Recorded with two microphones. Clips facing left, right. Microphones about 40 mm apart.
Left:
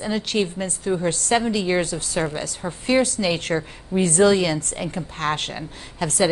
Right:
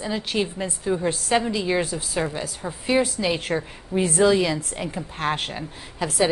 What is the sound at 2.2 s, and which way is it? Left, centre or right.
A woman's voice, centre.